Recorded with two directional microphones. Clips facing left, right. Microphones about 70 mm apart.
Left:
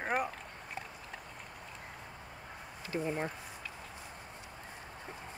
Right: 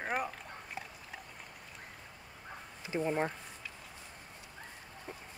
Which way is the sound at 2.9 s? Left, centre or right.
Centre.